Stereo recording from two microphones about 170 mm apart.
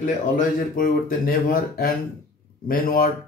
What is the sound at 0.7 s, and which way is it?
Speech, 55° left (ahead or behind).